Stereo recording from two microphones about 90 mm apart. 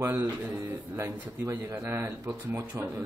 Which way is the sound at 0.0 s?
25° right (ahead or behind).